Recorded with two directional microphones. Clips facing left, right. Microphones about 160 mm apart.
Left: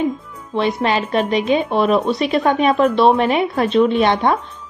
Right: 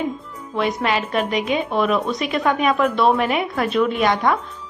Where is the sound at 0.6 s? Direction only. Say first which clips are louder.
Left 3 dB; 30° left (ahead or behind).